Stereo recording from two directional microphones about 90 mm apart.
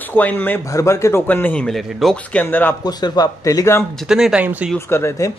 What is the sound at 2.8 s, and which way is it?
Speech, 50° left (ahead or behind).